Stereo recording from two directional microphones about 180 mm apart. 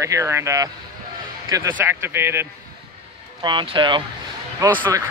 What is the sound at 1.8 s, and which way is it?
Speech, 15° right (ahead or behind).